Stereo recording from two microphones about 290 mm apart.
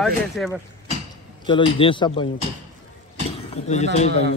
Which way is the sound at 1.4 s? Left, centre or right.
Centre.